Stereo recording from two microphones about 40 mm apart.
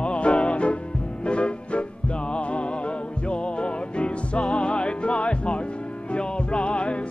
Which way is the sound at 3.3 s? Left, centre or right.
Left.